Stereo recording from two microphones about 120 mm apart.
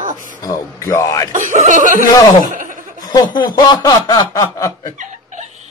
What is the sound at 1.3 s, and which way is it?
Speech, 90° right.